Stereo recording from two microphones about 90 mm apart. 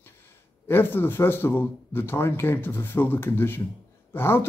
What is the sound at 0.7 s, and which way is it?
Speech, 25° left (ahead or behind).